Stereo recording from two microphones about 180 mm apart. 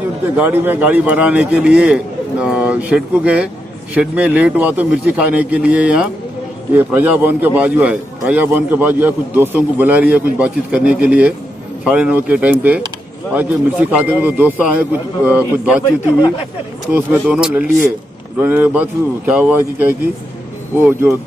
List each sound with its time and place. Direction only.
0.4 s a man's voice: 10° right (ahead or behind)
16.9 s a man's voice: 10° right (ahead or behind)